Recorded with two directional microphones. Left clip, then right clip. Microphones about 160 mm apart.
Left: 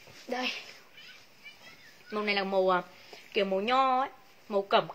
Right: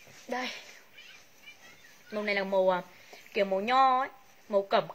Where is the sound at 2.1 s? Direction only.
15° left (ahead or behind).